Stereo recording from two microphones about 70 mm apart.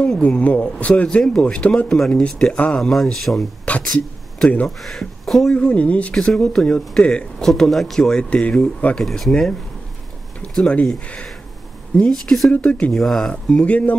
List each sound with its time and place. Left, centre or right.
0.2 s speech: centre
1.0 s speech: centre
2.8 s speech: centre
3.7 s speech: centre
4.6 s speech: centre
5.5 s speech: centre
6.1 s speech: centre
9.0 s speech: centre
12.0 s speech: centre
12.4 s speech: centre
12.9 s speech: centre